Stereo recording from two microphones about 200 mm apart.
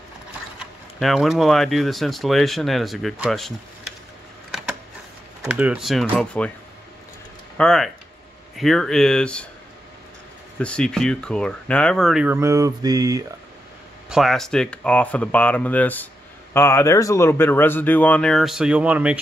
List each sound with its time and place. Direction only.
0.6 s speech: centre (ahead or behind)
5.4 s speech: 5° right (ahead or behind)
7.5 s speech: 5° left (ahead or behind)
10.6 s speech: 5° left (ahead or behind); by 13.2 s 20° right (ahead or behind)
14.0 s speech: centre (ahead or behind)